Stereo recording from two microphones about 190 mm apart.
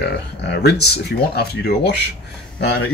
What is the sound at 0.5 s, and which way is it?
Speech, 60° left (ahead or behind).